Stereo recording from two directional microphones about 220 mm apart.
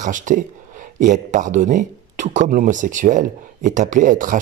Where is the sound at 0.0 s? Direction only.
35° right (ahead or behind).